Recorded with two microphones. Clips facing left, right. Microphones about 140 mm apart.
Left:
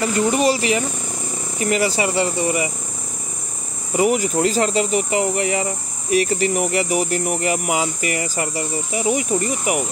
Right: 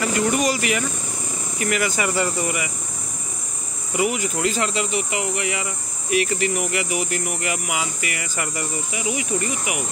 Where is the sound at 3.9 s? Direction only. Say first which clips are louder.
Left 5 dB; 40° left (ahead or behind).